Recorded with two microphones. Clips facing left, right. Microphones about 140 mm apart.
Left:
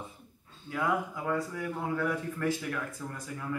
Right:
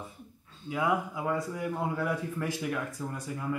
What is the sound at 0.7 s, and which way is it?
Speech, 15° right (ahead or behind).